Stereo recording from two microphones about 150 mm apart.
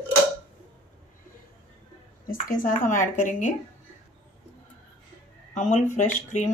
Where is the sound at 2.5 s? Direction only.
60° left (ahead or behind).